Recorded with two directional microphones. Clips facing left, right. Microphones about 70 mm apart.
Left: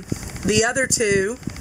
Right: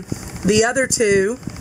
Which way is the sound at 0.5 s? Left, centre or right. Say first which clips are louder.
Right 3 dB; right.